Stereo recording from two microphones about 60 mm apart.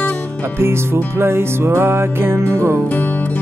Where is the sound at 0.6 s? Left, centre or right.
Right.